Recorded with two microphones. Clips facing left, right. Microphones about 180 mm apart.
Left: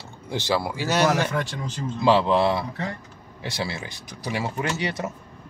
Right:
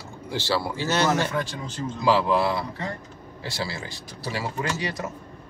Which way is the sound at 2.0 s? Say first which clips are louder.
Left 2 dB; 25° left (ahead or behind).